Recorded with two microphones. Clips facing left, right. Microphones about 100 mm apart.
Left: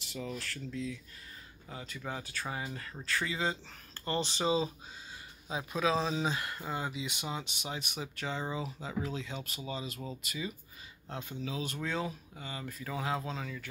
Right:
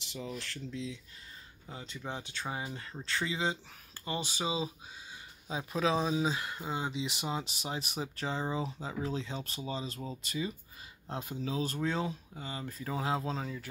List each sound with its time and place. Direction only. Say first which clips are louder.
0.1 s speech: left 1 dB; 20° right (ahead or behind)
5.5 s speech: even; 30° right (ahead or behind)
5.9 s speech: right 1 dB; 10° right (ahead or behind)
7.2 s speech: right 3 dB; 35° right (ahead or behind)
11.1 s speech: right 2 dB; 5° right (ahead or behind)
11.4 s speech: right 4 dB; 35° right (ahead or behind)